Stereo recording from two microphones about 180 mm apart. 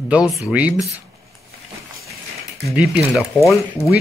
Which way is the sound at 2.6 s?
5° right (ahead or behind).